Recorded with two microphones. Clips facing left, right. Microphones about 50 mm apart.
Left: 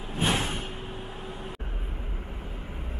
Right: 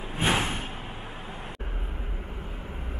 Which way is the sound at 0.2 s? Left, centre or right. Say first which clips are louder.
Right 2 dB; centre.